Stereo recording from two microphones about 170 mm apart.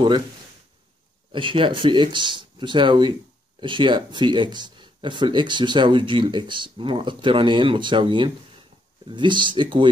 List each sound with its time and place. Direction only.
1.3 s speech: 30° right (ahead or behind)